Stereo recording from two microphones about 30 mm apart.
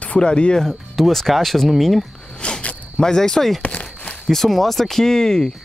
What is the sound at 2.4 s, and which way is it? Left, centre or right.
Speech, left.